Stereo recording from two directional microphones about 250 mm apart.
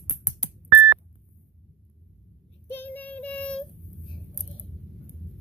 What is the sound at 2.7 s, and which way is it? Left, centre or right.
Child singing, centre.